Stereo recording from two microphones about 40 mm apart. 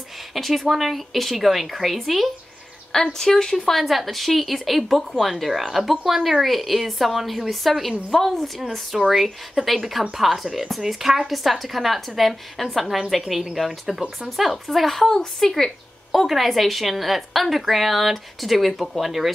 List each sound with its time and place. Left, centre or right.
0.3 s a woman's voice: centre
2.9 s speech: centre
3.5 s a woman's voice: centre
9.6 s speech: right
10.1 s a woman's voice: centre
15.0 s speech: centre
15.5 s a woman's voice: centre